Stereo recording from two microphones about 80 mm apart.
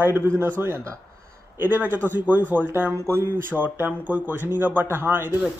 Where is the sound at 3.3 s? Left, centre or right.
Right.